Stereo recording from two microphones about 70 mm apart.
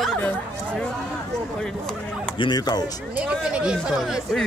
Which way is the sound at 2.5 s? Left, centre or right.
Left.